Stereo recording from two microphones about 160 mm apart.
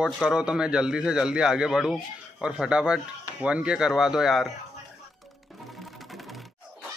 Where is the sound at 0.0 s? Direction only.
5° right (ahead or behind).